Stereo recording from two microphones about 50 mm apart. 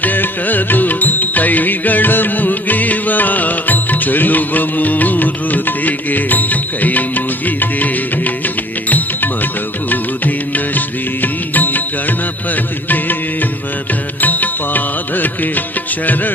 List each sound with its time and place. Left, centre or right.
0.0 s music: left